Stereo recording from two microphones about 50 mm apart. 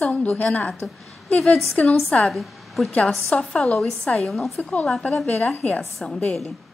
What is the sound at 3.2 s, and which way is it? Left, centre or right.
A woman's voice, left.